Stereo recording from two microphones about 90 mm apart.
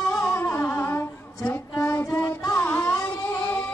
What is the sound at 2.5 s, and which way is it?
Music, 20° left (ahead or behind).